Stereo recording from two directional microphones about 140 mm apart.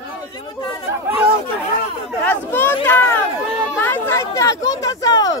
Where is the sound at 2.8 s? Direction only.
15° left (ahead or behind).